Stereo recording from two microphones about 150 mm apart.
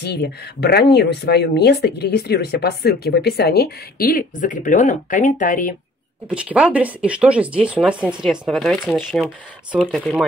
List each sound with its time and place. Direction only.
0.0 s speech: 90° left; by 5.8 s 60° left (ahead or behind)
6.2 s speech: 10° right (ahead or behind)